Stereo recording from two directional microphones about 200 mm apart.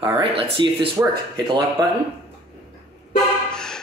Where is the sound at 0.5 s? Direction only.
25° right (ahead or behind).